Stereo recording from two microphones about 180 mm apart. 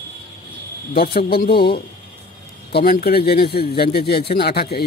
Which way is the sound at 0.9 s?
60° left (ahead or behind).